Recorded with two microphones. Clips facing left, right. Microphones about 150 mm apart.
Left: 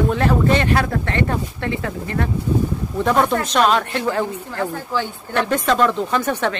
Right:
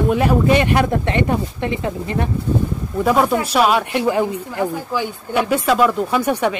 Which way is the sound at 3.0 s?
5° right (ahead or behind).